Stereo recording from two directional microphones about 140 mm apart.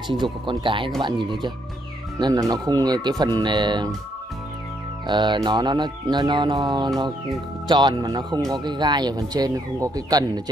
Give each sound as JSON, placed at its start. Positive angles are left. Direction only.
{"t": 0.1, "sound": "speech", "side_deg": -35}
{"t": 5.0, "sound": "speech", "side_deg": -35}